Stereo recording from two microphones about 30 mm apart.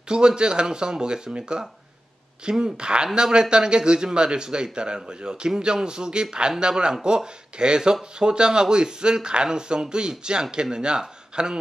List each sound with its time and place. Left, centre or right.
0.1 s speech: right
2.6 s speech: right